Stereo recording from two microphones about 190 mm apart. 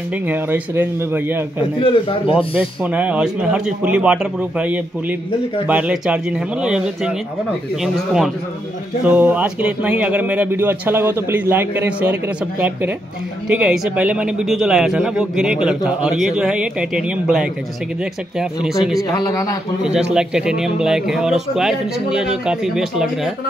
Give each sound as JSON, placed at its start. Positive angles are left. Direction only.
{"t": 0.3, "sound": "speech", "side_deg": -10}
{"t": 1.8, "sound": "speech", "side_deg": 30}
{"t": 2.5, "sound": "a man's voice", "side_deg": -5}
{"t": 19.0, "sound": "a man's voice", "side_deg": 20}
{"t": 19.8, "sound": "a man's voice", "side_deg": -5}